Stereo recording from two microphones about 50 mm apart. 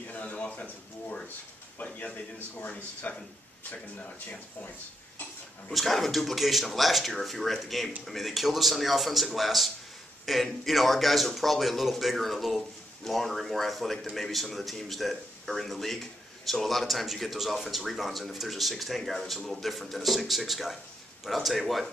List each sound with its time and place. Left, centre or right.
0.1 s a sound: left
2.3 s speech: left
5.7 s speech: centre